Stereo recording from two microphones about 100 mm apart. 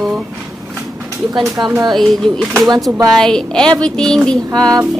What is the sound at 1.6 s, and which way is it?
Speech, 45° right (ahead or behind).